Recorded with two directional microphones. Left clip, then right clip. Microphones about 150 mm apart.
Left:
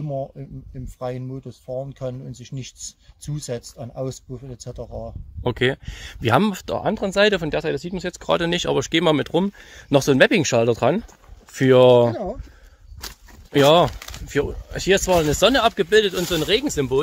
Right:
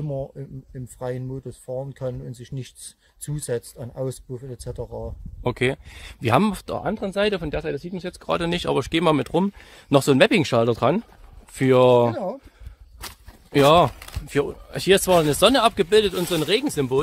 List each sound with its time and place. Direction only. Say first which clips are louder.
0.9 s speech: left 1 dB; 25° right (ahead or behind)
5.4 s speech: left 2 dB; 5° left (ahead or behind)
6.9 s speech: left 5 dB; 25° left (ahead or behind); by 12.2 s 5° left (ahead or behind)
13.5 s speech: left 1 dB; centre (ahead or behind)
14.2 s speech: even; 15° right (ahead or behind)